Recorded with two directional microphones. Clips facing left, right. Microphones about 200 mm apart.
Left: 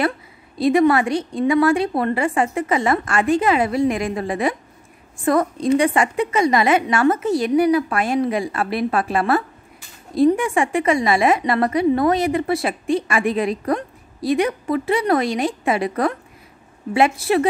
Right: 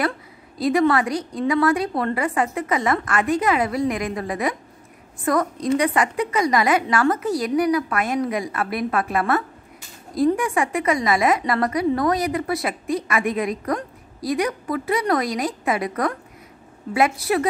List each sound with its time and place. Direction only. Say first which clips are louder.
0.6 s a woman's voice: left 3 dB; 25° left (ahead or behind)